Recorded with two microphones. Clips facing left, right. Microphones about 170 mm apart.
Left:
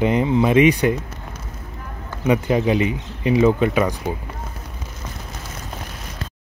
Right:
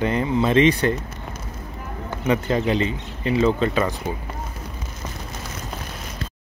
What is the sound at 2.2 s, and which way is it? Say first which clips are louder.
Speech: left 3 dB; 15° left (ahead or behind).